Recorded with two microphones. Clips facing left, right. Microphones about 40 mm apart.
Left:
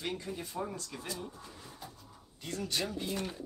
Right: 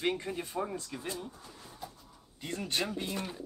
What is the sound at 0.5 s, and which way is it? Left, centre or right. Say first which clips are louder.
Speech: right 3 dB; right.